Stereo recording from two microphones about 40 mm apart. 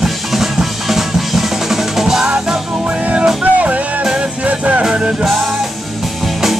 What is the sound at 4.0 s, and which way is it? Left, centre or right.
Music, centre.